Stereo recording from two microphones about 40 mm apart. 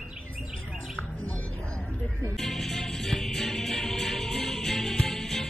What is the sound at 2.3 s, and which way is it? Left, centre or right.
Music, centre.